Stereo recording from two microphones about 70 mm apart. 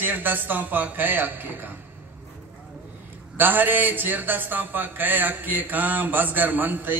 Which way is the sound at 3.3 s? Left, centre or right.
Right.